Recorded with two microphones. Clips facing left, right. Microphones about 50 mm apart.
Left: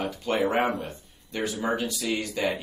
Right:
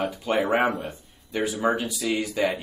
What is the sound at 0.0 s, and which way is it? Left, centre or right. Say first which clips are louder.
Speech: right 1 dB; centre.